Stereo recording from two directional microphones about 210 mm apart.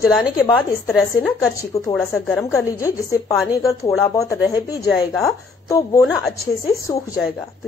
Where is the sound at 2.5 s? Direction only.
15° left (ahead or behind).